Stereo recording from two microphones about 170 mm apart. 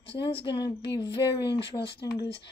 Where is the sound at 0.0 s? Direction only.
85° left.